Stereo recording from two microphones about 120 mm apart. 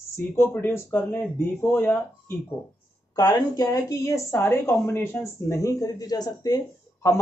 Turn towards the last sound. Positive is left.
turn(degrees=35)  # may be behind; listen again after turning